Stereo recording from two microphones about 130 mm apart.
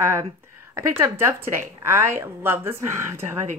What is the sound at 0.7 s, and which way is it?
Speech, 20° right (ahead or behind).